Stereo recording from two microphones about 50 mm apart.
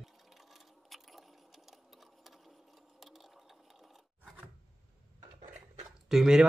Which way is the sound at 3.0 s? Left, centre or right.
Centre.